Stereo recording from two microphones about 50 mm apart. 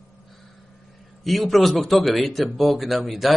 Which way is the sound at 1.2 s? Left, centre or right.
Centre.